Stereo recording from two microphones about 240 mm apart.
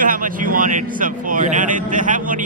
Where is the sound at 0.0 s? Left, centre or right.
Right.